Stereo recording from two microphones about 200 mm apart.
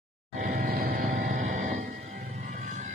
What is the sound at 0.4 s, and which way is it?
Vehicle, 45° right (ahead or behind).